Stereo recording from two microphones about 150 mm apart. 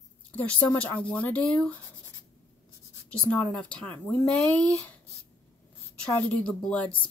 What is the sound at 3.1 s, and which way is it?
Speech, 5° left (ahead or behind).